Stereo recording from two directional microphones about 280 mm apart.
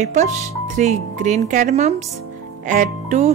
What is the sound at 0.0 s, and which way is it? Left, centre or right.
Speech, right.